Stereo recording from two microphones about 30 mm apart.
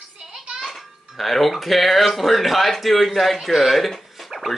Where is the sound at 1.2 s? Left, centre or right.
Centre.